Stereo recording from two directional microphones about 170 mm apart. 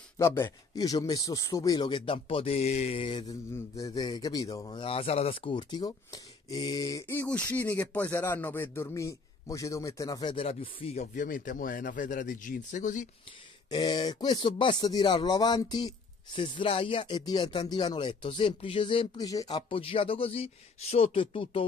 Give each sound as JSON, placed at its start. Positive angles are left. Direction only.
{"t": 0.2, "sound": "a man's voice", "side_deg": 15}
{"t": 3.3, "sound": "a man's voice", "side_deg": 20}
{"t": 13.7, "sound": "a man's voice", "side_deg": 25}